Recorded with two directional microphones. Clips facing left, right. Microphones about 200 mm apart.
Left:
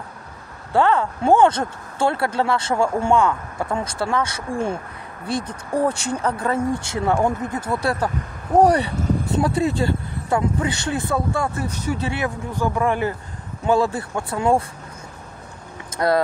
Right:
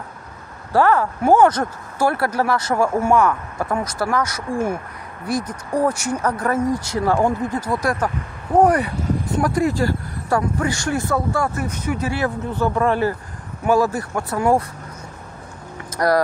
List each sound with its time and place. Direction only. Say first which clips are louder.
0.7 s speech: right 2 dB; 25° left (ahead or behind)
13.7 s speech: right 1 dB; 25° left (ahead or behind)
16.0 s speech: right 1 dB; 20° left (ahead or behind)